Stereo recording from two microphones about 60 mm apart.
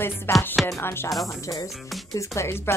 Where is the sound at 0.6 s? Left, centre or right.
Centre.